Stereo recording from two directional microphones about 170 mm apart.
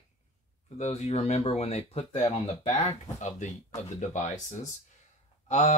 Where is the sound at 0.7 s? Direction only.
40° left (ahead or behind).